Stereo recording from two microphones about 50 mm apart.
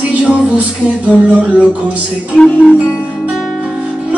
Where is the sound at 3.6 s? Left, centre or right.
Right.